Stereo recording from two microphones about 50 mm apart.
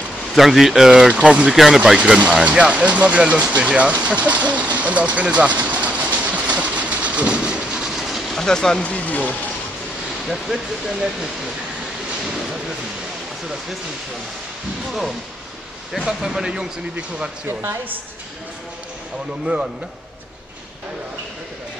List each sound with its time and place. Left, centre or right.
0.3 s speech: centre
1.1 s speech: right
1.5 s speech: centre
2.0 s speech: right
7.9 s train: centre
8.4 s speech: centre
8.8 s speech: left
10.2 s speech: centre
14.9 s speech: centre
19.4 s speech: centre